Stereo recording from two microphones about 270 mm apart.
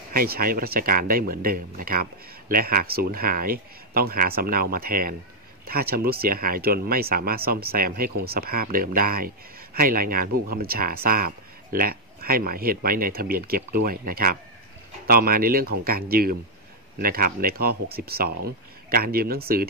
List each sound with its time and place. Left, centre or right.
0.1 s speech: right